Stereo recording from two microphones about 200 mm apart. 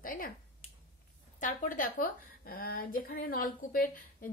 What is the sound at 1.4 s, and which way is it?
A woman's voice, 45° left (ahead or behind).